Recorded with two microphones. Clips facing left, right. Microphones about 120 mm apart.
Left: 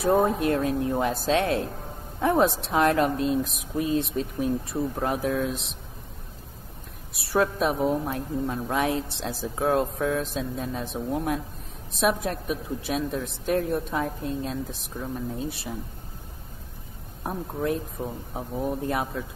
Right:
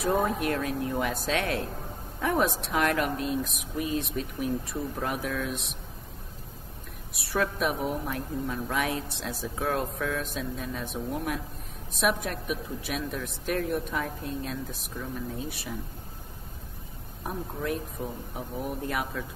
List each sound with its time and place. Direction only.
0.0 s a woman's voice: 30° left (ahead or behind)
7.2 s a woman's voice: 30° left (ahead or behind)
17.2 s a woman's voice: 30° left (ahead or behind)